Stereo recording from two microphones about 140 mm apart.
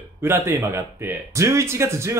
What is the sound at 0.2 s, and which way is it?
Speech, 20° right (ahead or behind).